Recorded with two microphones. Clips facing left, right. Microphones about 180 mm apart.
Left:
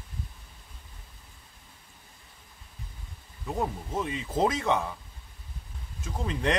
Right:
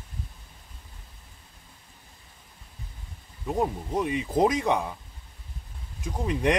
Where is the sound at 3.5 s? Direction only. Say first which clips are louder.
Right 4 dB; 15° right (ahead or behind).